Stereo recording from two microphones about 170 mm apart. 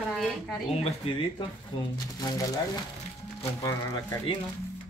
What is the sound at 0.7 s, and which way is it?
Speech, 35° left (ahead or behind).